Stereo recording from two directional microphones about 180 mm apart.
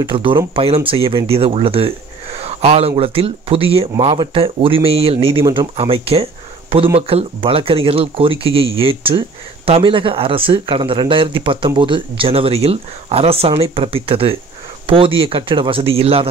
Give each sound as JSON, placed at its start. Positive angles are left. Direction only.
{"t": 0.1, "sound": "speech", "side_deg": -30}